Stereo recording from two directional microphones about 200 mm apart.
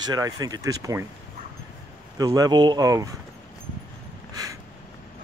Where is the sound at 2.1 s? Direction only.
20° right (ahead or behind).